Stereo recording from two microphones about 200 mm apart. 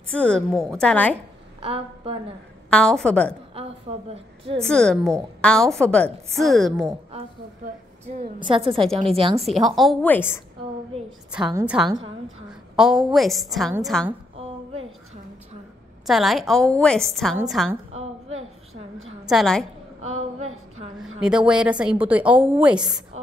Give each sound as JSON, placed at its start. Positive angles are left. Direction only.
{"t": 0.1, "sound": "a woman's voice", "side_deg": 5}
{"t": 1.6, "sound": "a woman's voice", "side_deg": -30}
{"t": 2.7, "sound": "a woman's voice", "side_deg": 5}
{"t": 3.9, "sound": "a woman's voice", "side_deg": -25}
{"t": 4.6, "sound": "a woman's voice", "side_deg": 5}
{"t": 7.6, "sound": "a woman's voice", "side_deg": -40}
{"t": 9.4, "sound": "a woman's voice", "side_deg": 0}
{"t": 11.5, "sound": "a woman's voice", "side_deg": -5}
{"t": 14.3, "sound": "a sound", "side_deg": -25}
{"t": 16.1, "sound": "a woman's voice", "side_deg": 0}
{"t": 19.2, "sound": "a woman's voice", "side_deg": 0}
{"t": 20.0, "sound": "a sound", "side_deg": -90}
{"t": 21.2, "sound": "a woman's voice", "side_deg": -5}